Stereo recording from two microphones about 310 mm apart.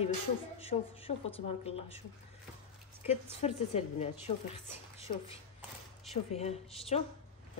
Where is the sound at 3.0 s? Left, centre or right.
Centre.